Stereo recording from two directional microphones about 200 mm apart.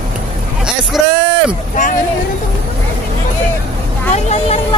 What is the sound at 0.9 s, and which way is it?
Speech, centre (ahead or behind).